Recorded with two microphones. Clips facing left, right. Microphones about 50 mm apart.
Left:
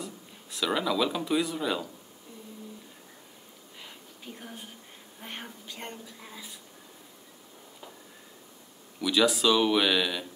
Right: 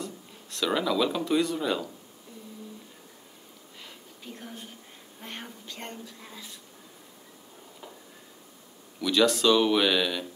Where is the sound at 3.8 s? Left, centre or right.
Centre.